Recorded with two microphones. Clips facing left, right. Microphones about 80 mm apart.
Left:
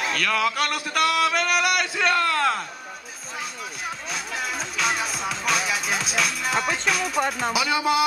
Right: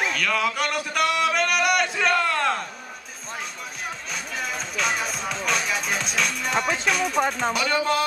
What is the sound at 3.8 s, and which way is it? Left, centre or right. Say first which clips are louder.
Music: left 2 dB; centre.